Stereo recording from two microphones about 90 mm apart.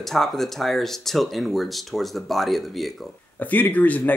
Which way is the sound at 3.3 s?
20° left (ahead or behind).